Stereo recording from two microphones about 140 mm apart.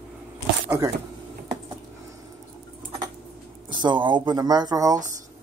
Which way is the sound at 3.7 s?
35° right (ahead or behind).